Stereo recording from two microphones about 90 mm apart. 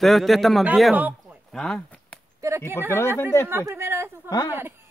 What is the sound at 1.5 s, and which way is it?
Speech, 5° left (ahead or behind).